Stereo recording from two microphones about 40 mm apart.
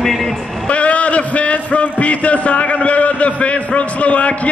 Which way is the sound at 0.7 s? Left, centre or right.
Left.